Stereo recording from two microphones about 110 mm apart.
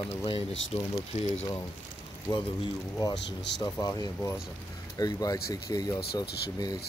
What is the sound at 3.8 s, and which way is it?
Speech, 30° left (ahead or behind).